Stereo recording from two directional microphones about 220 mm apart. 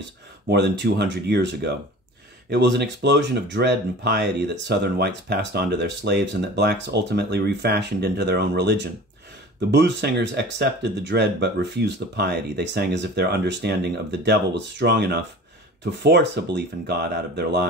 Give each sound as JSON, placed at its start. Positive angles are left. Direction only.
{"t": 0.5, "sound": "speech", "side_deg": -50}